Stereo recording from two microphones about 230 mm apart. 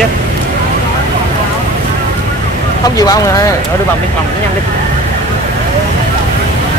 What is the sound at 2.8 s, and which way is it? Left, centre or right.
Speech, centre.